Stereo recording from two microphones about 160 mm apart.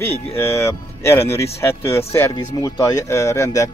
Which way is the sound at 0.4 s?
15° left (ahead or behind).